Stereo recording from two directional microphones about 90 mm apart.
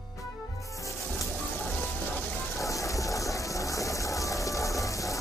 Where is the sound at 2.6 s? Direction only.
35° left (ahead or behind).